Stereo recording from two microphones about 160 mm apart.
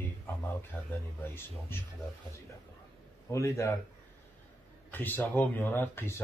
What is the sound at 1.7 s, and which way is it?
Speech, 15° left (ahead or behind).